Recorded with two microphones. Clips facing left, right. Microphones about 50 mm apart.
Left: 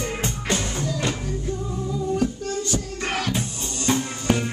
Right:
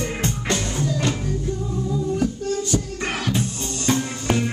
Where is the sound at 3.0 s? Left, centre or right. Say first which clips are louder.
Right 1 dB; centre.